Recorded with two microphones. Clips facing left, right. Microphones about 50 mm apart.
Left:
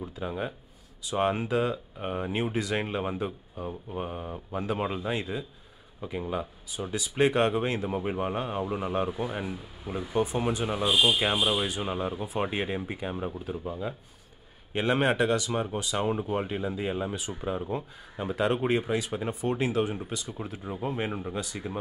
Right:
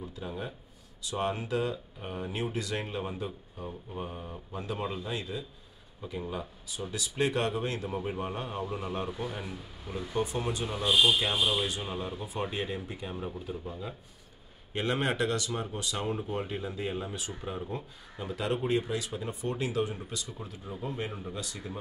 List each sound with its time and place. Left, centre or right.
0.2 s speech: left
3.5 s speech: left
5.9 s speech: left
10.8 s speech: centre
12.4 s speech: left